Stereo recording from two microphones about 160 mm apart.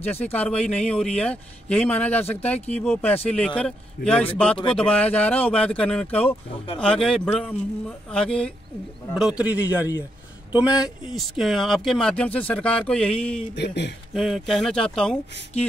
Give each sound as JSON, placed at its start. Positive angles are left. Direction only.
{"t": 0.0, "sound": "a man's voice", "side_deg": 10}
{"t": 13.6, "sound": "speech", "side_deg": 90}
{"t": 14.1, "sound": "speech", "side_deg": 0}